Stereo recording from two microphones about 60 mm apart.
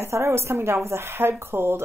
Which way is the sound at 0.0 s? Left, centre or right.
Right.